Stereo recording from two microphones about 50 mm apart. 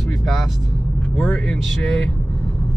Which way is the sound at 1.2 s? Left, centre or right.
Centre.